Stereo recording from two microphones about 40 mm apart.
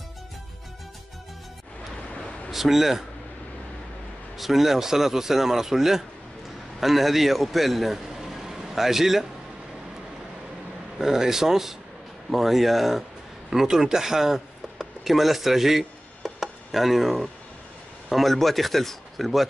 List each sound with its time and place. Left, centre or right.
2.1 s a sound: left
2.5 s speech: centre
4.4 s a man's voice: centre
11.0 s a man's voice: centre
16.2 s chopping: centre
18.1 s speech: centre